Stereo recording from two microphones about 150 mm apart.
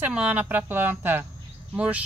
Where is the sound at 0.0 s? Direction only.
10° right (ahead or behind).